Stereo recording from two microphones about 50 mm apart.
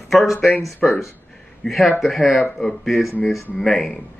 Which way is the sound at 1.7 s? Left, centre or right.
Centre.